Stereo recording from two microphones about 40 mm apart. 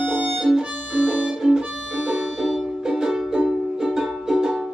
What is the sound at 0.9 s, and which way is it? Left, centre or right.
Music, right.